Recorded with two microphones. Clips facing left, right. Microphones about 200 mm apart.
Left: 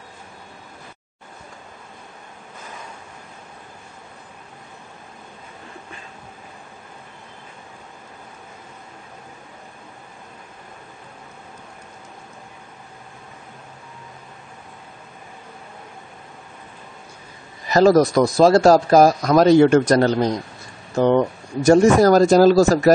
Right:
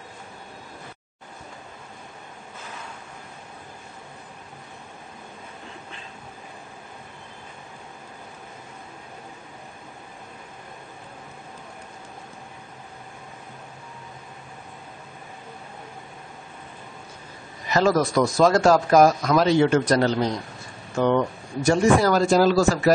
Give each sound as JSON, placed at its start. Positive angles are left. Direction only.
{"t": 17.6, "sound": "speech", "side_deg": 40}